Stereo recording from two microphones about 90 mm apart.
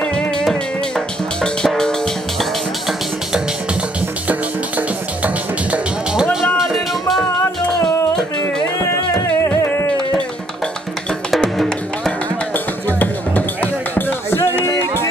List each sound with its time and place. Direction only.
0.4 s music: 5° left (ahead or behind)
4.3 s music: 15° right (ahead or behind)
6.6 s music: centre (ahead or behind)
9.1 s music: 35° left (ahead or behind)
11.2 s music: 5° left (ahead or behind)
12.5 s music: 20° left (ahead or behind)